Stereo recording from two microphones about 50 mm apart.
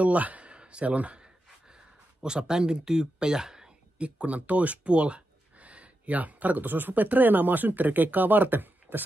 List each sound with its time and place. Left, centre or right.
0.0 s speech: right
2.2 s speech: centre
4.0 s speech: right